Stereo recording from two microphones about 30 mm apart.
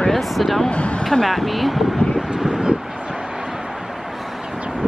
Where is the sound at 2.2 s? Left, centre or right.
Centre.